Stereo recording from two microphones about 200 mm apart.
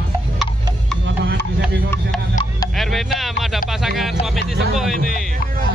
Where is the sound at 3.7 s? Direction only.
Centre (ahead or behind).